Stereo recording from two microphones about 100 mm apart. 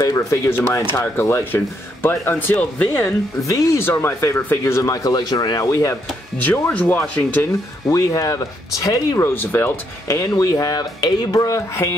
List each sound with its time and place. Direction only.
0.0 s speech: 35° left (ahead or behind)
0.5 s speech: 25° left (ahead or behind)
3.4 s speech: 35° left (ahead or behind)
5.7 s speech: 30° left (ahead or behind)
6.3 s speech: 15° left (ahead or behind)
7.8 s speech: 35° left (ahead or behind)
9.3 s speech: 20° left (ahead or behind)